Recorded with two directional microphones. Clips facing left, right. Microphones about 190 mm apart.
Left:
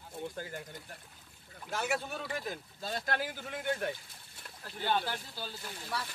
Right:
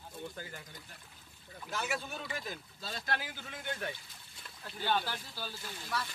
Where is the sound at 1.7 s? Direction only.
45° left (ahead or behind).